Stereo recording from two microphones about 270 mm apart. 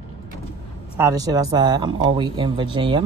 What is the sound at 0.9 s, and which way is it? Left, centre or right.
Speech, centre.